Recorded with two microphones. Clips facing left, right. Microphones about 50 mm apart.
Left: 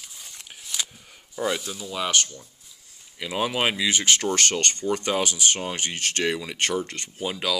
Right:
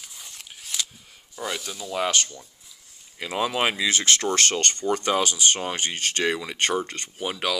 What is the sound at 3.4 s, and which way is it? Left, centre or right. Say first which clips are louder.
Speech: even; right.